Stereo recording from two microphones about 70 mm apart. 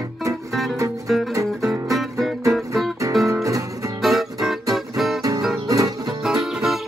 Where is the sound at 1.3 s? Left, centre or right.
Right.